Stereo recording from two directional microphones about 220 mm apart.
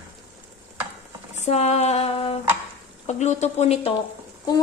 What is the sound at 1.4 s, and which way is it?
A woman's voice, 30° left (ahead or behind).